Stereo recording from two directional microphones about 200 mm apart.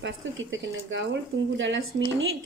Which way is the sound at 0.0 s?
70° right (ahead or behind).